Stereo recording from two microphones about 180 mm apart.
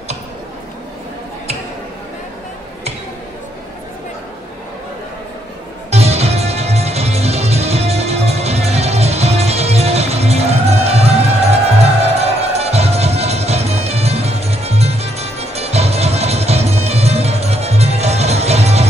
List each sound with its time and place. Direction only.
5.9 s music: 35° right (ahead or behind)
12.2 s music: 35° right (ahead or behind)